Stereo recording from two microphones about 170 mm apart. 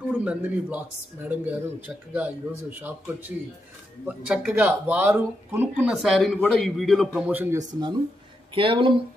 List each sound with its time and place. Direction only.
0.1 s speech: 10° right (ahead or behind)
8.5 s speech: 30° right (ahead or behind)